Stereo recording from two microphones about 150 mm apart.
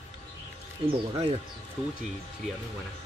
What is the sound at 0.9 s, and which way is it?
Speech, 35° right (ahead or behind).